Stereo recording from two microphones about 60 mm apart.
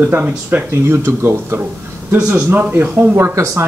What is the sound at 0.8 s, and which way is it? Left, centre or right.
Speech, right.